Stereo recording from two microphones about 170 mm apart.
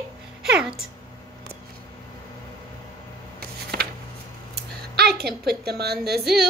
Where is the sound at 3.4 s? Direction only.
65° right (ahead or behind).